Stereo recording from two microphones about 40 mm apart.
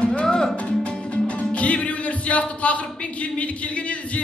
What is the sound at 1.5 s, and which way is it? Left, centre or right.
Music, left.